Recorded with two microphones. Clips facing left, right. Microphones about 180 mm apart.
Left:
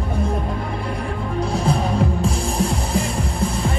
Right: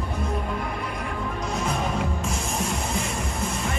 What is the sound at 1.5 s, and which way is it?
Music, 30° left (ahead or behind).